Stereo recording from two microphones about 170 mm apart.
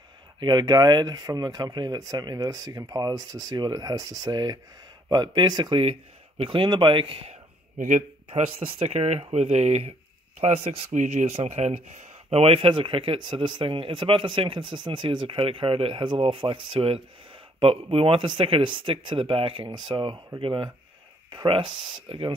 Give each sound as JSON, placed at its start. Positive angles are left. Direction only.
{"t": 0.4, "sound": "speech", "side_deg": -25}
{"t": 7.7, "sound": "speech", "side_deg": -50}
{"t": 8.3, "sound": "speech", "side_deg": -35}